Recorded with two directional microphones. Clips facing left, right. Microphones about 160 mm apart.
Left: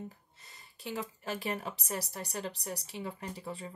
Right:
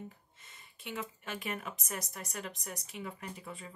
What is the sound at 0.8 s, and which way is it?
Speech, 35° left (ahead or behind).